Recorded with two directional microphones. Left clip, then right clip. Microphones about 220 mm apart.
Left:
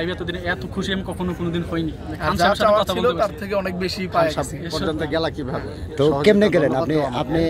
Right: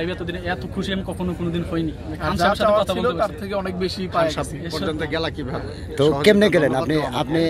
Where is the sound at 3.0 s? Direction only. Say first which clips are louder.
Left 2 dB; 20° left (ahead or behind).